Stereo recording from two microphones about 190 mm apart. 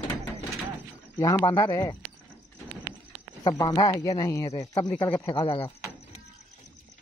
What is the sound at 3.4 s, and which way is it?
Speech, 20° left (ahead or behind).